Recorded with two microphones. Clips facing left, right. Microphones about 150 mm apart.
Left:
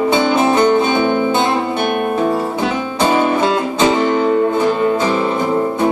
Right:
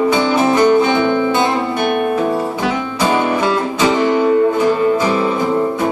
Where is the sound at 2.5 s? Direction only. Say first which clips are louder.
Even; 25° left (ahead or behind).